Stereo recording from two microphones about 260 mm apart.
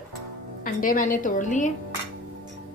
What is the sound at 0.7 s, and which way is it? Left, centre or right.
Speech, left.